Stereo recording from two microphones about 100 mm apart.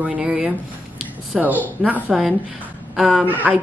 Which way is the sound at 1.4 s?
15° right (ahead or behind).